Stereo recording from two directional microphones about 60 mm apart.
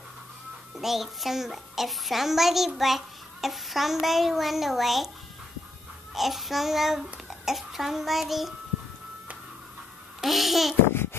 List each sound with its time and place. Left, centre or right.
0.7 s a child's voice: centre
6.1 s a child's voice: centre
10.2 s a child's voice: centre